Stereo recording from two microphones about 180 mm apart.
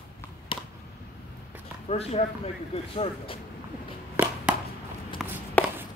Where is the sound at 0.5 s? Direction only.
25° left (ahead or behind).